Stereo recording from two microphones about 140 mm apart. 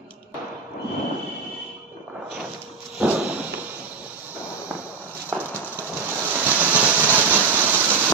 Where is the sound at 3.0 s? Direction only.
10° right (ahead or behind).